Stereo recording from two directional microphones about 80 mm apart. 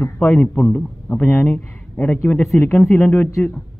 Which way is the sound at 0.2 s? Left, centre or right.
Centre.